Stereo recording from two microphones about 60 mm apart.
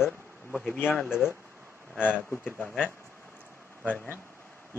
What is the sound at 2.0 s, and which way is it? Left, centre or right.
Speech, left.